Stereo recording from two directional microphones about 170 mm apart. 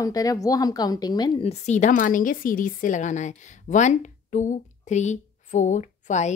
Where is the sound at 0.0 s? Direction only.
20° left (ahead or behind).